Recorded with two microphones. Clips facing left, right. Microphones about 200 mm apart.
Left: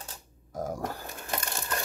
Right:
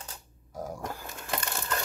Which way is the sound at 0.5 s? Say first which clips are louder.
Left 4 dB; 45° left (ahead or behind).